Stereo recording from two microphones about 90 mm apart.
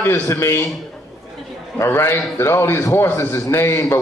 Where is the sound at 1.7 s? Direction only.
25° left (ahead or behind).